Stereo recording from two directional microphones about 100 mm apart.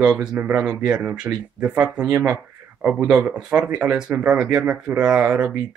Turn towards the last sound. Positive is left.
turn(degrees=-10)  # may be behind; listen again after turning